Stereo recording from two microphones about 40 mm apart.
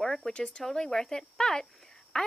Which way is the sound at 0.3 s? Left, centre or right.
Left.